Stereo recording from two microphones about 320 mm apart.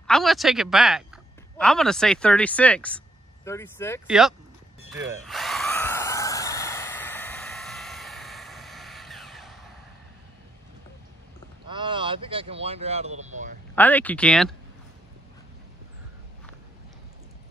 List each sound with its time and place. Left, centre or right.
0.0 s speech: centre
4.9 s drill: centre
11.6 s speech: centre
13.7 s speech: centre